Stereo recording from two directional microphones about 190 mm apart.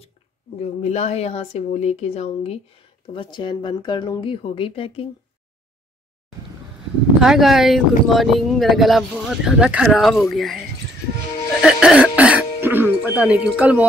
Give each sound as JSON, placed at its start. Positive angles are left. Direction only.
{"t": 0.6, "sound": "speech", "side_deg": 35}
{"t": 7.2, "sound": "speech", "side_deg": 0}
{"t": 11.6, "sound": "throat clearing", "side_deg": -5}